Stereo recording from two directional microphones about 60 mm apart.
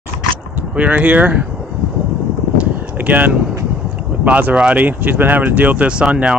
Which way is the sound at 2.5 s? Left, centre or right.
Right.